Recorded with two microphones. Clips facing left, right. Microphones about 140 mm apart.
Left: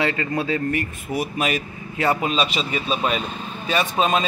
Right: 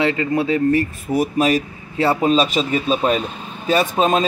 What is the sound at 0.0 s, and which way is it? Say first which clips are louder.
Speech: right 5 dB; 25° right (ahead or behind).